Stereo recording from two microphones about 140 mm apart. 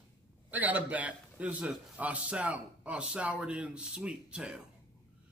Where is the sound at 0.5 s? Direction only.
10° right (ahead or behind).